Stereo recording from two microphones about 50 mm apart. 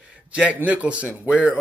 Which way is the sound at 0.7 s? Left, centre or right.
Right.